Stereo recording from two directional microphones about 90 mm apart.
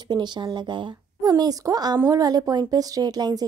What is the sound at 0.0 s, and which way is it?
A woman's voice, 55° right (ahead or behind).